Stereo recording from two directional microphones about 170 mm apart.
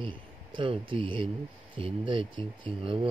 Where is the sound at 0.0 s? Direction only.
30° right (ahead or behind).